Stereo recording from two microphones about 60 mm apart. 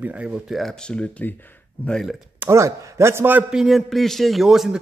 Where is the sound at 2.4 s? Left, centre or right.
Right.